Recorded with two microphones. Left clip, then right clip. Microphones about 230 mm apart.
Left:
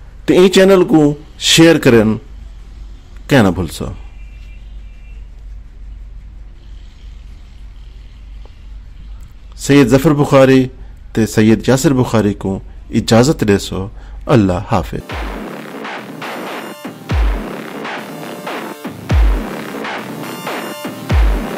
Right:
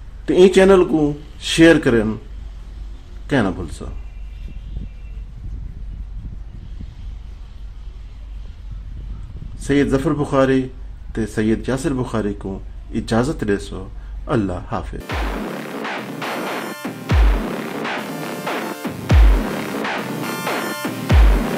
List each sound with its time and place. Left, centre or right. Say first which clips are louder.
0.2 s a man's voice: left 3 dB; left
3.3 s a man's voice: left 8 dB; left
9.6 s a man's voice: left 8 dB; left
15.0 s music: even; centre